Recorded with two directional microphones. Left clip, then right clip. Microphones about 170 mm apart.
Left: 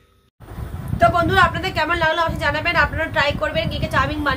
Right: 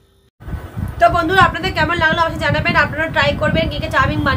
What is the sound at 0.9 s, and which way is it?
Speech, centre (ahead or behind).